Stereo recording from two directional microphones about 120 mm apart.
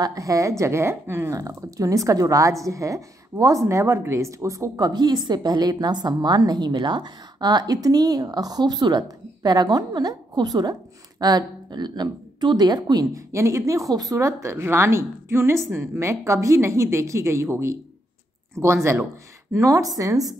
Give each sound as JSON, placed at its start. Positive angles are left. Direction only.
{"t": 0.0, "sound": "a woman's voice", "side_deg": -30}